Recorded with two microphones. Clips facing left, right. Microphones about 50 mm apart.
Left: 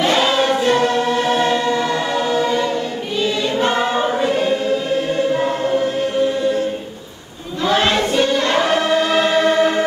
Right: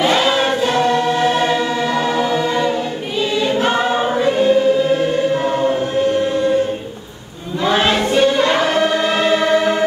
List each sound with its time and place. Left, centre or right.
0.0 s choir: centre
1.5 s music: centre
7.7 s choir: centre